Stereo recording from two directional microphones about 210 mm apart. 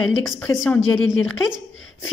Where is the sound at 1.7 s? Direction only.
70° left (ahead or behind).